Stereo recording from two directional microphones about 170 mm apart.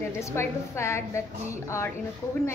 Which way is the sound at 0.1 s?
15° left (ahead or behind).